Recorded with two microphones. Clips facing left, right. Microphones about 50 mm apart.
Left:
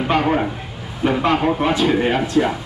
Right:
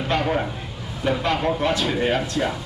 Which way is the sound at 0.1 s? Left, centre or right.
Centre.